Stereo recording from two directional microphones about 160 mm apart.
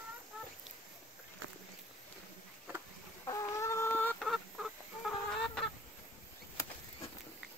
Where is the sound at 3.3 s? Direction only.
20° left (ahead or behind).